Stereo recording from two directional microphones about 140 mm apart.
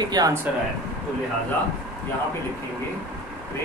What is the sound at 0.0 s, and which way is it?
Speech, 30° right (ahead or behind).